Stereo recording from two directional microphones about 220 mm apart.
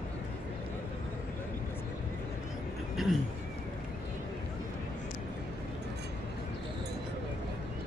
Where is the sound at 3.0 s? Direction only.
Centre (ahead or behind).